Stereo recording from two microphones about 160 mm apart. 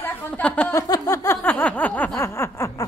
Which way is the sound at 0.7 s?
20° left (ahead or behind).